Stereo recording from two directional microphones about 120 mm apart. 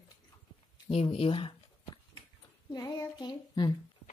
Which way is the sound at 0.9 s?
55° left (ahead or behind).